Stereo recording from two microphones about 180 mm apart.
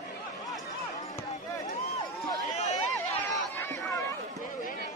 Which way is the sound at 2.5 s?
40° left (ahead or behind).